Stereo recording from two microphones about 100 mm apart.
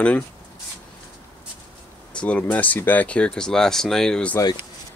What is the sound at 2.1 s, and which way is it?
Speech, 10° left (ahead or behind).